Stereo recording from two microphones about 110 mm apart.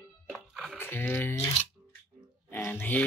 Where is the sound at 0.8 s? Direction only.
20° left (ahead or behind).